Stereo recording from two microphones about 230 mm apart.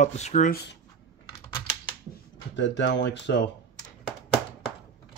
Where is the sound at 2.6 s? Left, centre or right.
Left.